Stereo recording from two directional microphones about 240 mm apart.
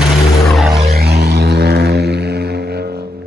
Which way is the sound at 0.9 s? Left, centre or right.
Right.